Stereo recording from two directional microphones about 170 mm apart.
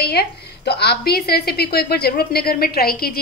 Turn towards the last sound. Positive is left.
turn(degrees=60)  # may be behind; listen again after turning